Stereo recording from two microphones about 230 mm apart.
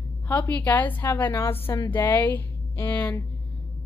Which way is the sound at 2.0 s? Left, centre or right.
Centre.